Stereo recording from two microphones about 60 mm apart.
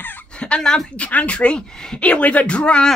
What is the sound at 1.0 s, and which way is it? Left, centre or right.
Beatboxing, left.